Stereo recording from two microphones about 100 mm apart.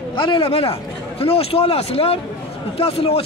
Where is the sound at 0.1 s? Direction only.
60° left (ahead or behind).